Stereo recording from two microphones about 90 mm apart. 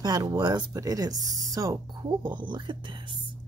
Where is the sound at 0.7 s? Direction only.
40° right (ahead or behind).